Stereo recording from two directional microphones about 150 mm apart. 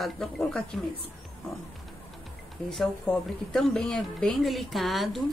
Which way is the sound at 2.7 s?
Centre (ahead or behind).